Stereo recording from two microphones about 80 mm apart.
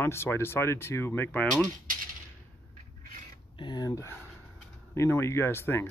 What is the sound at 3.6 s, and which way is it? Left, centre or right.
Speech, left.